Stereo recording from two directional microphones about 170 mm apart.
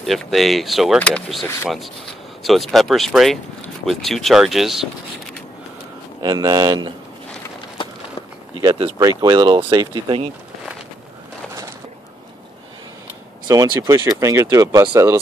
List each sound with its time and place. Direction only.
0.0 s speech: centre (ahead or behind)
6.2 s speech: 20° right (ahead or behind)
9.2 s speech: 25° right (ahead or behind)
13.5 s speech: 20° right (ahead or behind)